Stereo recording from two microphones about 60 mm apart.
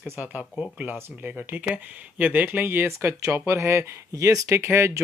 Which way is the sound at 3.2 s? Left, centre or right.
Right.